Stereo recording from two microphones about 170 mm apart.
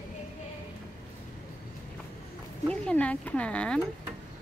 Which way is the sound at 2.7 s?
5° left (ahead or behind).